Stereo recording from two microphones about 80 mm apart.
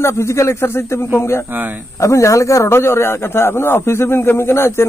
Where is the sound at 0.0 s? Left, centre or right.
Left.